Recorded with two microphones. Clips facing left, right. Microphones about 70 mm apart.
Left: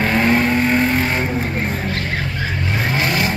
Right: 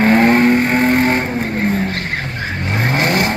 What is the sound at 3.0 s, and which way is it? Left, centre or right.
Vehicle, right.